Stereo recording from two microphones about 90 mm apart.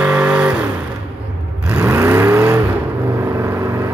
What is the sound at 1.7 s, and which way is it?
Vehicle, 25° right (ahead or behind).